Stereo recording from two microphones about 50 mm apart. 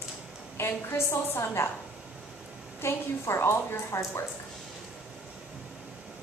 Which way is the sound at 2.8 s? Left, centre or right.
Left.